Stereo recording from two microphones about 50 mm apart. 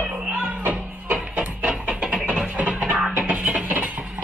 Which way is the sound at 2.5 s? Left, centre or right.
Right.